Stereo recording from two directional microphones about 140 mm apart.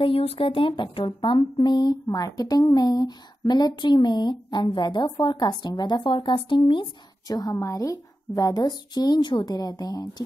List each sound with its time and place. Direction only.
0.0 s speech: 45° left (ahead or behind); by 10.2 s 25° left (ahead or behind)